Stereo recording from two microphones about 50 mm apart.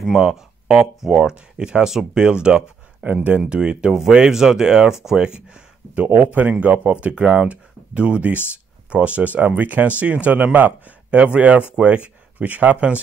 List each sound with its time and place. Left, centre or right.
0.0 s speech: centre; by 6.0 s right
6.1 s speech: right